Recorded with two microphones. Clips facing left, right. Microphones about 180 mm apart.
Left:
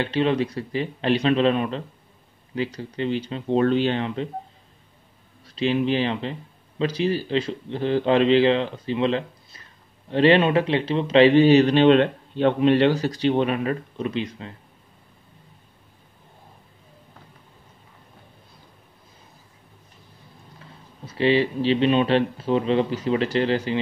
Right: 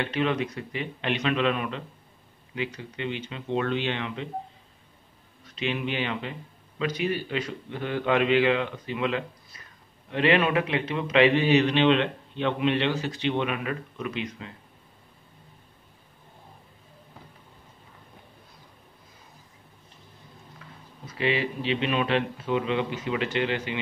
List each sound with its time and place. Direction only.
0.0 s a man's voice: 30° left (ahead or behind)
5.4 s a man's voice: 35° left (ahead or behind)
20.5 s speech: 30° left (ahead or behind)